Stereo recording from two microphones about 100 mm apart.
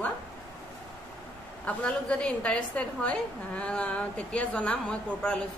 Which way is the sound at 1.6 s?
10° left (ahead or behind).